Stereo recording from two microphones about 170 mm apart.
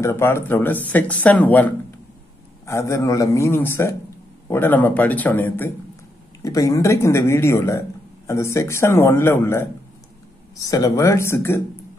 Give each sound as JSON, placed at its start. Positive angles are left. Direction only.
{"t": 0.0, "sound": "speech", "side_deg": 15}